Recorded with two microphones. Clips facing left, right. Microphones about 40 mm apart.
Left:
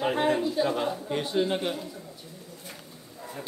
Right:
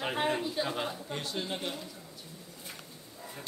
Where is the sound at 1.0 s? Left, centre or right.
Centre.